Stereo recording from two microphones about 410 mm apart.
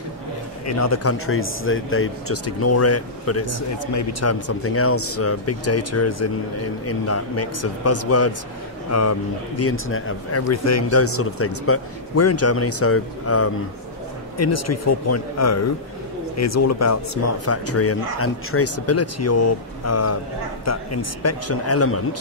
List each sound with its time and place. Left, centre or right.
0.7 s speech: left
9.6 s speech: left